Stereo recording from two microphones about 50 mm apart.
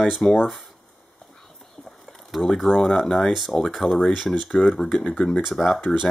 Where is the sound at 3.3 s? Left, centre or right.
Centre.